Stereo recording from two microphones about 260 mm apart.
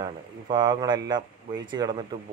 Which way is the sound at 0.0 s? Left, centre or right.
Centre.